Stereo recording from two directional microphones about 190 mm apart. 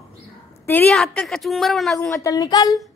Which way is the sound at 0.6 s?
10° left (ahead or behind).